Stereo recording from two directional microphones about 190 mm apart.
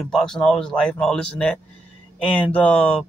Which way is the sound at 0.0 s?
5° left (ahead or behind).